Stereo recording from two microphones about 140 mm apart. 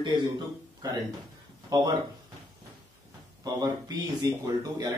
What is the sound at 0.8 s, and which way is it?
Speech, 25° right (ahead or behind).